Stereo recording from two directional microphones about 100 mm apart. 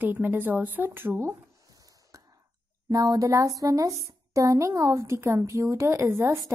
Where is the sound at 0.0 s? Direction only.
20° right (ahead or behind).